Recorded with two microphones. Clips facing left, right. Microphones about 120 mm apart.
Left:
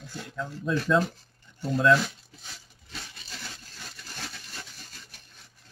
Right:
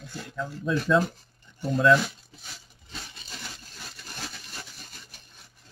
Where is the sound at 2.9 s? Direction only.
15° right (ahead or behind).